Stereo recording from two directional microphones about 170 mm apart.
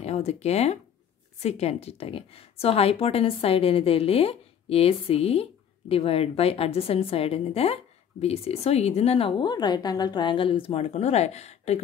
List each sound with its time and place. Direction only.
0.0 s a woman's voice: 40° left (ahead or behind)